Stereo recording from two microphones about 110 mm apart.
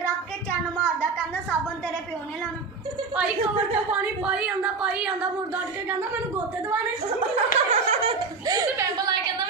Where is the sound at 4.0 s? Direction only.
10° right (ahead or behind).